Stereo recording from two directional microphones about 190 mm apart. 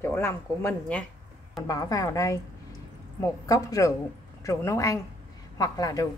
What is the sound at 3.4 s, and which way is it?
A woman's voice, 20° left (ahead or behind).